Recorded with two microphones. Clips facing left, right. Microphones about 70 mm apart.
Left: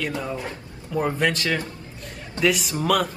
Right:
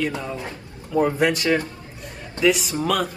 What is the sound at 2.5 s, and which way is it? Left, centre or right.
Speech, centre.